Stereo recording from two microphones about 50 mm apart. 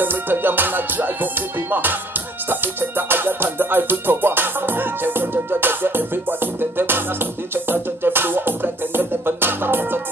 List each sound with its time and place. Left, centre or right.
0.0 s music: right